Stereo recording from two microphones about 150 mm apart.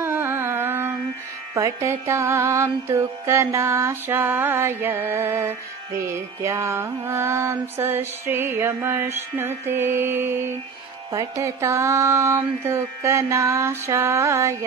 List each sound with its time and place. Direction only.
0.0 s carnatic music: 15° right (ahead or behind)
1.5 s music: 20° right (ahead or behind)